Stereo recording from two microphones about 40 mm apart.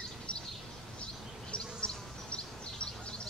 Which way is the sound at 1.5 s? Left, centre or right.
Left.